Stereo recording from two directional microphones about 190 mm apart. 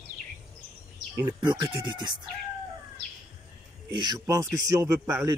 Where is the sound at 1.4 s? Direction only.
20° right (ahead or behind).